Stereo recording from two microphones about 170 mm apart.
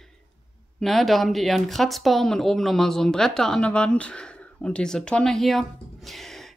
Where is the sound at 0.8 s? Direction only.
Centre (ahead or behind).